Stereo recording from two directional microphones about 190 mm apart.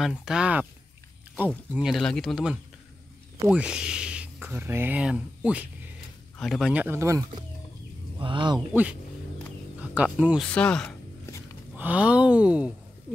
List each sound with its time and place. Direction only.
0.0 s speech: 5° right (ahead or behind); by 8.5 s 25° right (ahead or behind)
8.5 s speech: 5° right (ahead or behind)
11.7 s speech: 5° right (ahead or behind)